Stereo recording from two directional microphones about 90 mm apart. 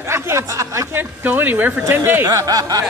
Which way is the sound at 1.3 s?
20° right (ahead or behind).